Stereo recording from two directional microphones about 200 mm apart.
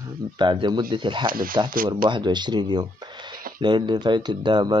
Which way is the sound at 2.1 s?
20° right (ahead or behind).